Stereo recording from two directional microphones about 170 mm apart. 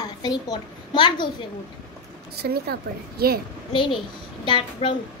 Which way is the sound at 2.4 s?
65° right (ahead or behind).